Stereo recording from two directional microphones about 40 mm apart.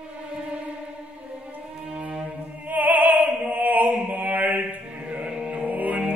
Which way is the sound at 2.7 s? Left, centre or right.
Right.